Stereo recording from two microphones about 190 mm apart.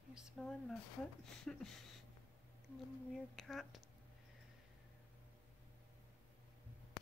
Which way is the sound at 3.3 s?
Centre (ahead or behind).